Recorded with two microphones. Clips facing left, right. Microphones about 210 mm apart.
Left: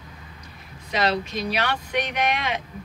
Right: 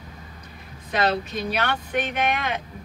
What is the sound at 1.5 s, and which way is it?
Speech, 50° right (ahead or behind).